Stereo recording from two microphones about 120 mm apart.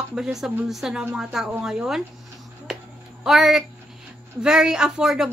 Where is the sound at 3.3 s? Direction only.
5° right (ahead or behind).